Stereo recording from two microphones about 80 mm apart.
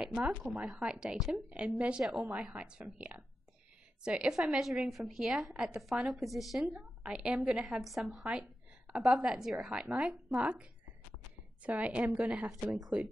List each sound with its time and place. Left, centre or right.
0.0 s a sound: centre
0.4 s a woman's voice: centre
6.7 s a woman's voice: centre